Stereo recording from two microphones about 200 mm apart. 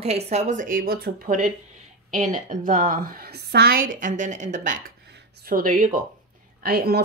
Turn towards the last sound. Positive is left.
turn(degrees=-50)  # may be behind; listen again after turning